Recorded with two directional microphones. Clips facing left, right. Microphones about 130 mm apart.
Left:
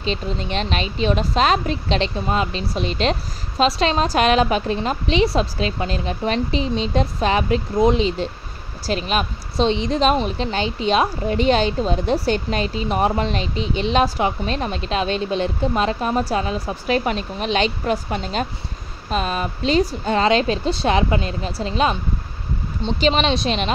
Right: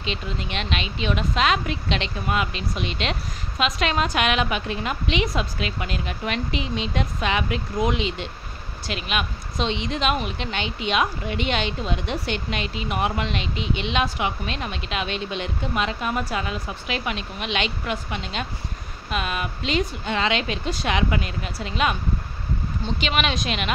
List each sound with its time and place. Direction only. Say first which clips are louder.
0.0 s a woman's voice: left 5 dB; 35° left (ahead or behind)